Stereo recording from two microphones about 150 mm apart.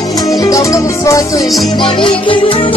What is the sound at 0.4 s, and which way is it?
Music, 20° left (ahead or behind).